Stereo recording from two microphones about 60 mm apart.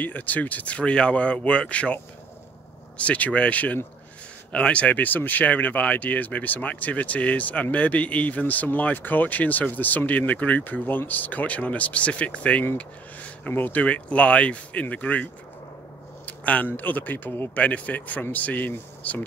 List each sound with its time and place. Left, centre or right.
0.0 s speech: left
3.0 s speech: left
12.7 s a sound: left
13.5 s speech: left
16.3 s a sound: left
16.7 s speech: left